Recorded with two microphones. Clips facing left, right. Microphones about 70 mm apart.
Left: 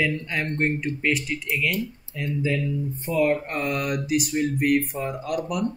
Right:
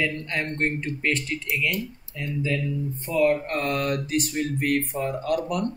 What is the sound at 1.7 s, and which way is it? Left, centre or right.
Speech, centre.